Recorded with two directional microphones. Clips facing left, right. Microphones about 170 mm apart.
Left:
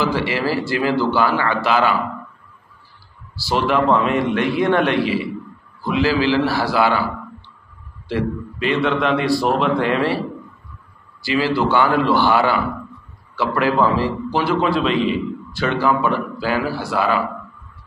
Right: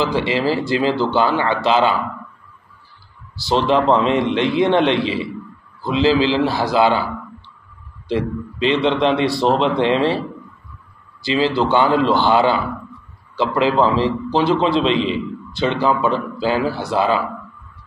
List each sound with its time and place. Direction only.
0.0 s a man's voice: 20° right (ahead or behind)
3.4 s a man's voice: 25° right (ahead or behind)
8.1 s a man's voice: 20° right (ahead or behind)
11.2 s a man's voice: 25° right (ahead or behind)